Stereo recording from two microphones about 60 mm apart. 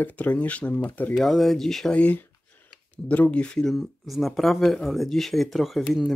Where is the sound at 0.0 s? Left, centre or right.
Left.